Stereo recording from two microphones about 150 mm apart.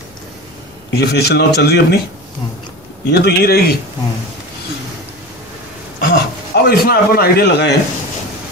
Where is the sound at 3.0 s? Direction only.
90° left.